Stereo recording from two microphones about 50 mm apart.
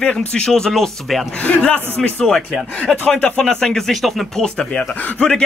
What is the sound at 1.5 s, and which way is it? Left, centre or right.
Speech, left.